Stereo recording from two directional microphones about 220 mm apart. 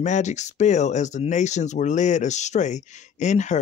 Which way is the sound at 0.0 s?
35° left (ahead or behind).